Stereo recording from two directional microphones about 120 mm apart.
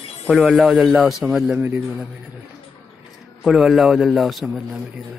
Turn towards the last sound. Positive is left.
turn(degrees=0)  # may be behind; listen again after turning